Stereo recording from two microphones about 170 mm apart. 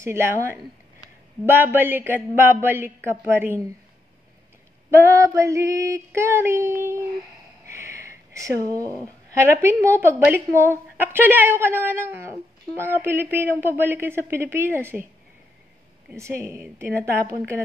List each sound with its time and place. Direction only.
0.0 s a woman's voice: 15° right (ahead or behind)
4.9 s a woman's voice: 15° right (ahead or behind)
7.7 s a sound: 15° right (ahead or behind)
9.4 s a woman's voice: 15° right (ahead or behind)
16.1 s a woman's voice: 15° right (ahead or behind)